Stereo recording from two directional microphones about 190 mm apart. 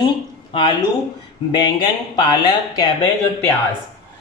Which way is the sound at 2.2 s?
20° left (ahead or behind).